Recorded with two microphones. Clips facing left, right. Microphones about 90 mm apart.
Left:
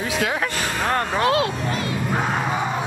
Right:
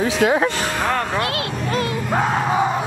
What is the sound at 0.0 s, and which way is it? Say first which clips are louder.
Music: right 6 dB; 25° right (ahead or behind).